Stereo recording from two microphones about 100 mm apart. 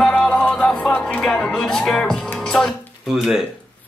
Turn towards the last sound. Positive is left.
turn(degrees=-5)  # may be behind; listen again after turning